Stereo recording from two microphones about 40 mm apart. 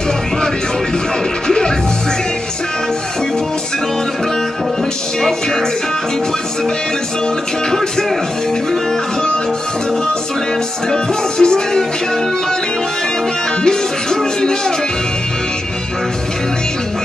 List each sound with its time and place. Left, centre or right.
10.9 s music: centre